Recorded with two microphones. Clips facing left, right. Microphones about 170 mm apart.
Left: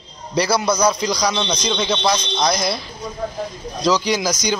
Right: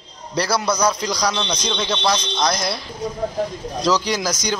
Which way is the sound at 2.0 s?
20° left (ahead or behind).